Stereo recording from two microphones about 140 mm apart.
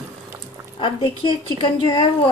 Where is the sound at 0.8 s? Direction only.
35° left (ahead or behind).